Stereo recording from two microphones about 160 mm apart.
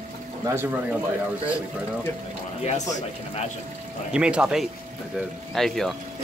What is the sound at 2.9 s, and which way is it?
Speech, 45° left (ahead or behind).